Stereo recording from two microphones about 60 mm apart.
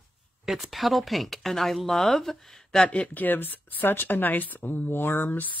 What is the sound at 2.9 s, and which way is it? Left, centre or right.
Speech, left.